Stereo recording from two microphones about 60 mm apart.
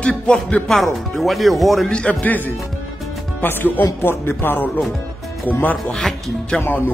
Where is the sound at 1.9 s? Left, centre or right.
Centre.